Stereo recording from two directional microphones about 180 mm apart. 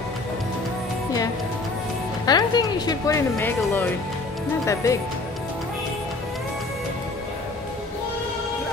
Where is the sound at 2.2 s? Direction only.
20° left (ahead or behind).